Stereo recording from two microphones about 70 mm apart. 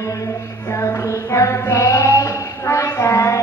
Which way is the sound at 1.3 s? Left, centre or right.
Left.